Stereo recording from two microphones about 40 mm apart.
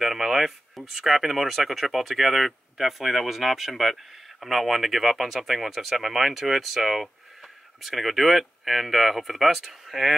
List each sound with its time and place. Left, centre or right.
0.0 s speech: centre